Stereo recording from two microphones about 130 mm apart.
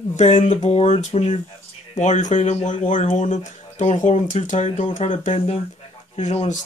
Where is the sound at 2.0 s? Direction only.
75° left (ahead or behind).